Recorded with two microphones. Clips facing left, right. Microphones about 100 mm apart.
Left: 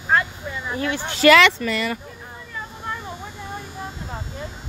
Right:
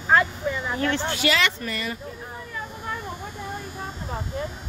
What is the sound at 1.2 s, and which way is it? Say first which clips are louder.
Speech: left 12 dB; 75° left (ahead or behind).